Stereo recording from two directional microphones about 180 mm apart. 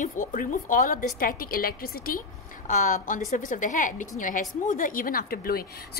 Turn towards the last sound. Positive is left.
turn(degrees=55)  # may be behind; listen again after turning